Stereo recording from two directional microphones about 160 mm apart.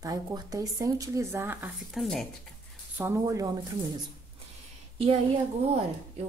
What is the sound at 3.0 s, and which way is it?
Speech, 20° right (ahead or behind).